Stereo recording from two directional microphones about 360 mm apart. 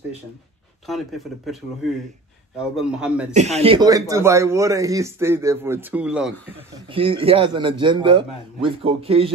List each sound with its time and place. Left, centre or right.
0.8 s a man's voice: centre
3.3 s a man's voice: centre
6.9 s a man's voice: centre